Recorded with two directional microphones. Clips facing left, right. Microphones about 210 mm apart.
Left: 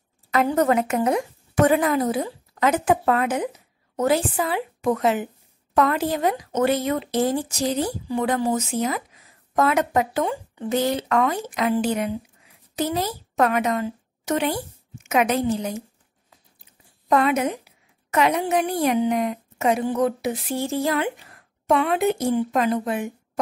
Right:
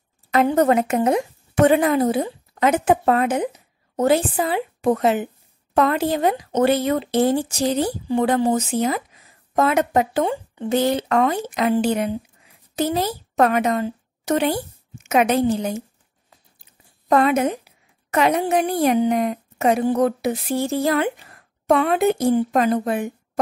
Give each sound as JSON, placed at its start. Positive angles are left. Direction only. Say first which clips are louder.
{"t": 0.3, "sound": "a woman's voice", "louder": "right 3 dB", "side_deg": -25}
{"t": 17.1, "sound": "a woman's voice", "louder": "right 3 dB", "side_deg": -40}